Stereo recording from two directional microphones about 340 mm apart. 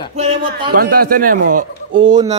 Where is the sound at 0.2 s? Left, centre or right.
Centre.